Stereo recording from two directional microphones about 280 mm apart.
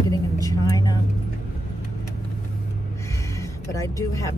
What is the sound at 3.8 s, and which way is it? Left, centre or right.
Speech, centre.